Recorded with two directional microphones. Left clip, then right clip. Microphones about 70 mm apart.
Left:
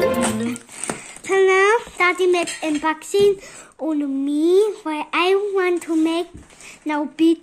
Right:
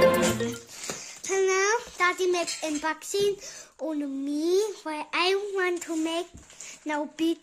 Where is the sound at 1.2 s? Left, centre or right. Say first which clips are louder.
Left 9 dB; right.